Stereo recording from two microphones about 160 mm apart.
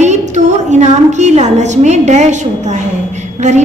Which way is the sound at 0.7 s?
45° right (ahead or behind).